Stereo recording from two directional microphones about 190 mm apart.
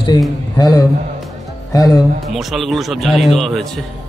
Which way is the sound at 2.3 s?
Centre (ahead or behind).